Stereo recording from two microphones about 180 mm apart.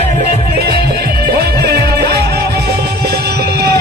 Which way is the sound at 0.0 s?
35° left (ahead or behind).